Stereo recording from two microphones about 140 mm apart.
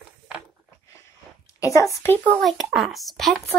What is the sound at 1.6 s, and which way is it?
Speech, 20° left (ahead or behind).